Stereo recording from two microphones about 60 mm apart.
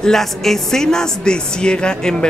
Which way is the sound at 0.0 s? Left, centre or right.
Centre.